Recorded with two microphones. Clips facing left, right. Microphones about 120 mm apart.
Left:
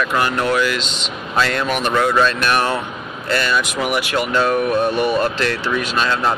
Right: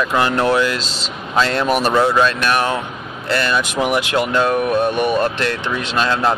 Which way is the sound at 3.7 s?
25° right (ahead or behind).